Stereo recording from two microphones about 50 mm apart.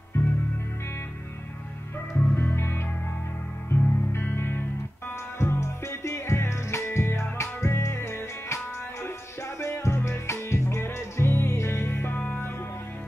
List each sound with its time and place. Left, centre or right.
0.2 s music: left
2.3 s music: left
5.4 s music: left
9.7 s music: left